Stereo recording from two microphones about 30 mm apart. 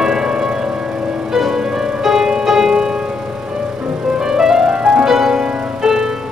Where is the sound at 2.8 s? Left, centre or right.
Right.